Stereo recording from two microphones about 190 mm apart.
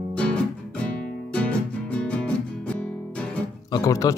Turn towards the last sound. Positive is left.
turn(degrees=15)  # may be behind; listen again after turning